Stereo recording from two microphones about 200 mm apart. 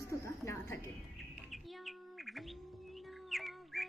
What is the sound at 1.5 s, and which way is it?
Bird, centre (ahead or behind).